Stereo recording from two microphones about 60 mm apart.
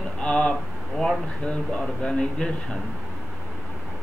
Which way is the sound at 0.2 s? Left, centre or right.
Centre.